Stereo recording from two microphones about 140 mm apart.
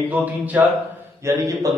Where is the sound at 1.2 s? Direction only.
25° right (ahead or behind).